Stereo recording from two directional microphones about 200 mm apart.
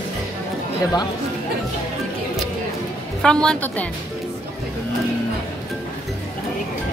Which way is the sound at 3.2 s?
5° left (ahead or behind).